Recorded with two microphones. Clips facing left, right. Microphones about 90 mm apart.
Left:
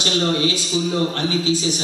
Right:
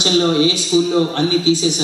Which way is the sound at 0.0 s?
15° right (ahead or behind).